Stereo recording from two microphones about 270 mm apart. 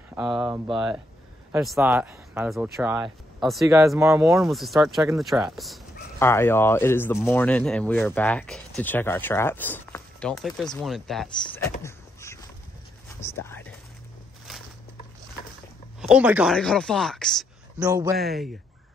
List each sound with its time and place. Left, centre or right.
0.1 s speech: centre
11.8 s a sound: centre
13.2 s whispering: centre
16.0 s speech: centre
17.7 s speech: centre